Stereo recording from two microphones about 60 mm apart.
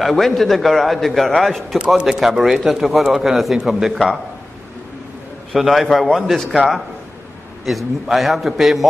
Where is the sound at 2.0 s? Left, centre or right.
Centre.